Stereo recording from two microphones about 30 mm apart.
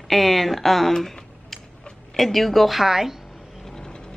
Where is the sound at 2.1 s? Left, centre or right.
Centre.